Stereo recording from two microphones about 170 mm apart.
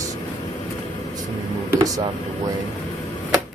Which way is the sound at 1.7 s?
20° right (ahead or behind).